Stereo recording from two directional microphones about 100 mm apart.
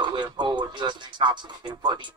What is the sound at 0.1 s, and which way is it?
Speech, 50° right (ahead or behind).